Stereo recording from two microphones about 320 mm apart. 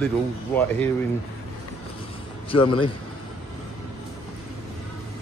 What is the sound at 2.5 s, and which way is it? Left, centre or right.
Speech, centre.